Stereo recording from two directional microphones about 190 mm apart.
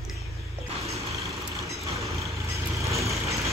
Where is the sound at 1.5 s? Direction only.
15° right (ahead or behind).